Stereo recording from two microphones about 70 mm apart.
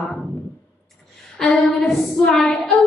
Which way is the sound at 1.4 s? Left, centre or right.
Centre.